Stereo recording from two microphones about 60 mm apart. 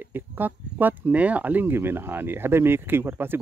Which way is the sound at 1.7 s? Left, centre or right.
Right.